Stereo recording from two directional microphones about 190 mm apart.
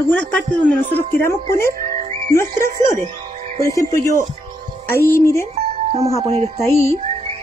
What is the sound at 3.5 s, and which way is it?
A woman's voice, 15° left (ahead or behind).